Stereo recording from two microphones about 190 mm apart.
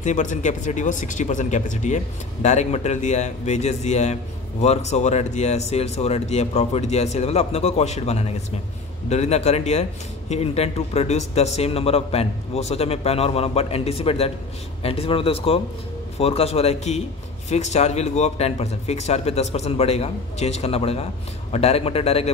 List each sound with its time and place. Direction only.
0.0 s speech: 40° left (ahead or behind)